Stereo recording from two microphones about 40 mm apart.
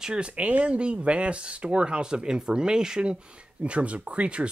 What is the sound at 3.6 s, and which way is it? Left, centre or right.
Speech, right.